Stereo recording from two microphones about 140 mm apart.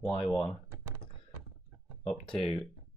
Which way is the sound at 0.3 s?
5° right (ahead or behind).